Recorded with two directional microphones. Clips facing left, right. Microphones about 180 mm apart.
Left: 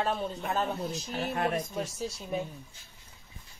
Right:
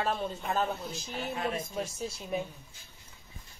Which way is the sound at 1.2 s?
55° left (ahead or behind).